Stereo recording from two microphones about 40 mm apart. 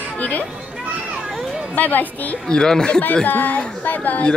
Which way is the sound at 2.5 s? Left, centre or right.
Centre.